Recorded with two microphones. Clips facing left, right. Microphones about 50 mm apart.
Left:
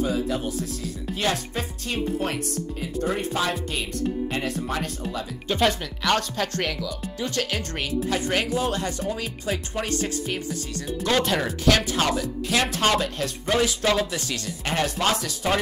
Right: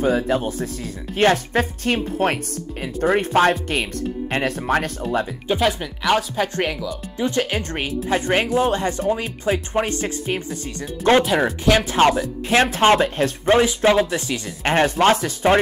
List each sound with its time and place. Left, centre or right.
0.0 s speech: right
5.6 s speech: centre
14.6 s speech: right